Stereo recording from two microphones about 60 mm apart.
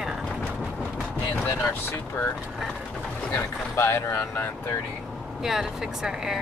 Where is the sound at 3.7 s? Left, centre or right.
Left.